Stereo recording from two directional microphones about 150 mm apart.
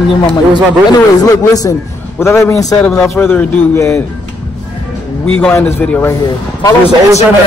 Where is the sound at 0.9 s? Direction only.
25° left (ahead or behind).